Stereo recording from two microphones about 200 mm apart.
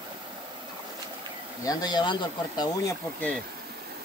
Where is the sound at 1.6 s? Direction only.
20° left (ahead or behind).